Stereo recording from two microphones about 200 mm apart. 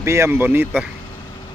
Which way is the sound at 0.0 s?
15° right (ahead or behind).